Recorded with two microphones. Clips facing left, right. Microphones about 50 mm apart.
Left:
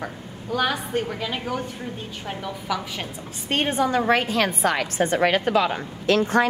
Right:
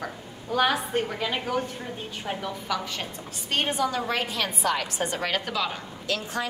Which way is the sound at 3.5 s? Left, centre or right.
Left.